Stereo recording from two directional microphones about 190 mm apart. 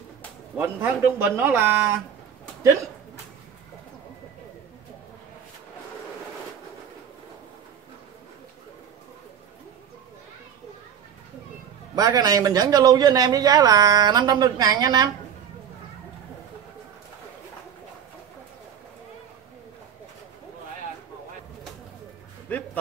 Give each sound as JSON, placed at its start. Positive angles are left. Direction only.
{"t": 0.6, "sound": "a man's voice", "side_deg": -10}
{"t": 11.9, "sound": "a man's voice", "side_deg": -20}